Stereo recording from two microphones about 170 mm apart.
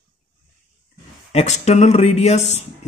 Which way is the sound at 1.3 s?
40° left (ahead or behind).